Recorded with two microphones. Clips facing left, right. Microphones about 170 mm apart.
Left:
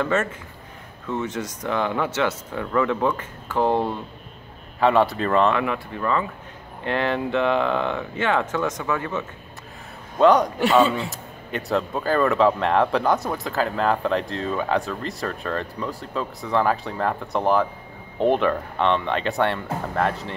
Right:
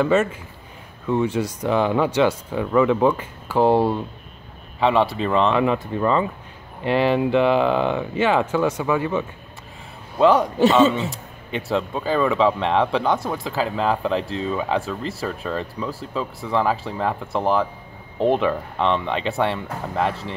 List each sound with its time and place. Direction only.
0.0 s speech: 10° right (ahead or behind)
4.7 s speech: centre (ahead or behind)
5.5 s speech: 25° right (ahead or behind)
6.8 s speech: 15° right (ahead or behind)